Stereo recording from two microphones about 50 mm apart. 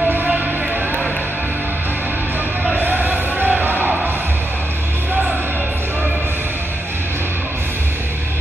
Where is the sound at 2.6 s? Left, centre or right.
Right.